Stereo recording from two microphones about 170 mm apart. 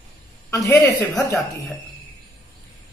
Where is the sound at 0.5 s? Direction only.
20° left (ahead or behind).